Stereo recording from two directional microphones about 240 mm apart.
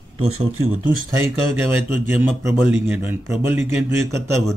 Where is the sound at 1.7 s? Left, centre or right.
Centre.